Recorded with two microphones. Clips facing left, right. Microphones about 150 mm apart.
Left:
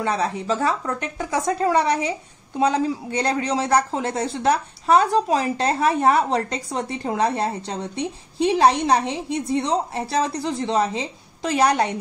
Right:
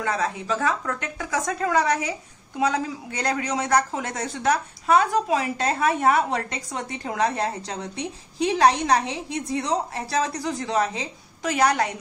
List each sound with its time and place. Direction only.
0.0 s speech: 30° left (ahead or behind)